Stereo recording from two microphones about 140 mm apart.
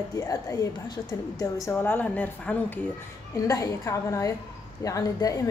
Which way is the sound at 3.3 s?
25° left (ahead or behind).